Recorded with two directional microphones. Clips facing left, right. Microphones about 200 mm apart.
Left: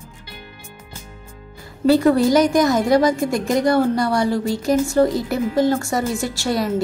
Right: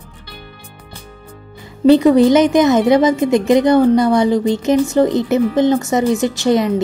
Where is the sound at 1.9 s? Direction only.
20° right (ahead or behind).